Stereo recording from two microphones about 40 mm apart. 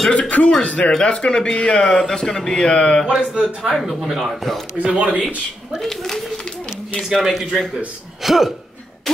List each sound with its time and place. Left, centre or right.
0.1 s music: left
0.6 s a man's voice: left
2.0 s a man's voice: centre
3.1 s a man's voice: centre
3.7 s speech: centre
4.7 s speech: right
5.8 s a child's voice: centre
7.1 s speech: centre
9.1 s a sound: centre